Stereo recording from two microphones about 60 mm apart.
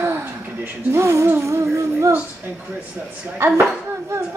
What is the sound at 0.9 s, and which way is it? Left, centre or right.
Speech, right.